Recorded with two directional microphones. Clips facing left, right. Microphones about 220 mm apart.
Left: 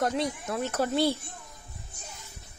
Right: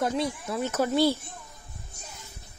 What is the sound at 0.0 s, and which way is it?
Speech, centre (ahead or behind).